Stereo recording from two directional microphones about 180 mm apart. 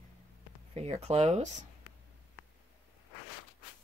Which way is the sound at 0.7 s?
35° right (ahead or behind).